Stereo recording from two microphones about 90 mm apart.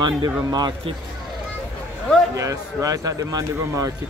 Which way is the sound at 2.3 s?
40° right (ahead or behind).